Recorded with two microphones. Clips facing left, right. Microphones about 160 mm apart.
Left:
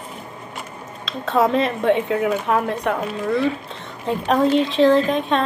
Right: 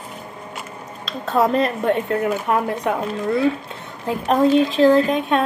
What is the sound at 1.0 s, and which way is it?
Speech, centre (ahead or behind).